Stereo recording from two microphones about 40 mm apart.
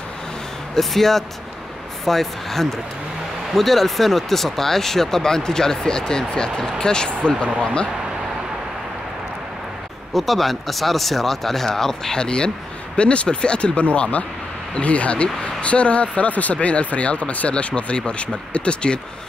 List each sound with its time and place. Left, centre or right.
0.7 s speech: centre
10.1 s speech: centre; by 18.9 s left